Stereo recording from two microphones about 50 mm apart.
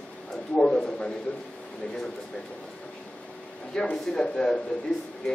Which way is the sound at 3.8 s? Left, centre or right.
Centre.